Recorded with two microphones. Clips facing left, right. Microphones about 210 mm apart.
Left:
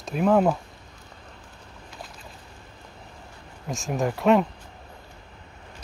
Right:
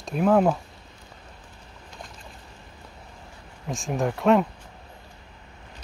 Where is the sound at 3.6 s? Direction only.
Centre (ahead or behind).